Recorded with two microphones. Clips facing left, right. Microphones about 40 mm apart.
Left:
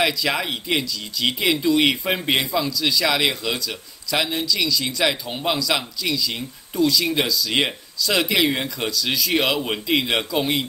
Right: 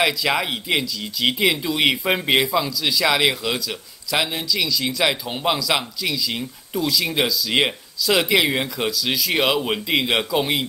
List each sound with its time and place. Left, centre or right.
0.0 s speech: centre